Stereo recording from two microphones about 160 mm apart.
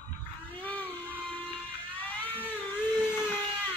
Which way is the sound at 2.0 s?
10° left (ahead or behind).